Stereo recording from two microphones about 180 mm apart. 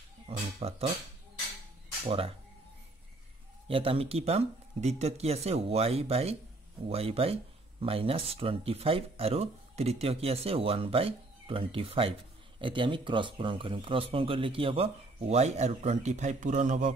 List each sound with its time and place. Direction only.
0.6 s speech: 35° right (ahead or behind)
2.0 s speech: 30° right (ahead or behind)
3.6 s speech: 30° right (ahead or behind)